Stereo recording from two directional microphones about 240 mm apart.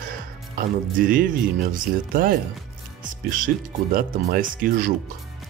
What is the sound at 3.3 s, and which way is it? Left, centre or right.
Speech, right.